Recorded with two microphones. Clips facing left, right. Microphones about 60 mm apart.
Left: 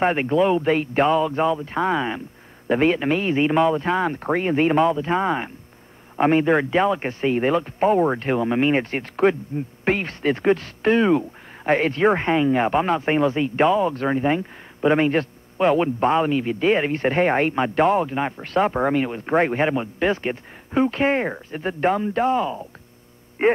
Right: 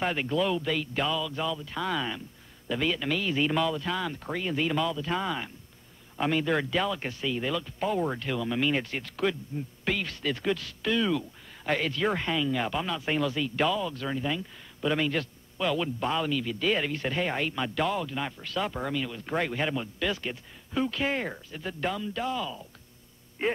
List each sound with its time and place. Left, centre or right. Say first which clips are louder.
0.0 s speech: left 9 dB; left